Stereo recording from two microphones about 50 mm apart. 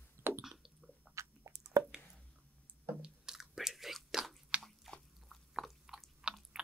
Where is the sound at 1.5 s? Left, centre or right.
Right.